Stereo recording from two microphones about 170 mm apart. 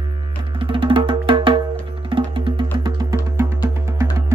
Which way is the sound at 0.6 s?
30° right (ahead or behind).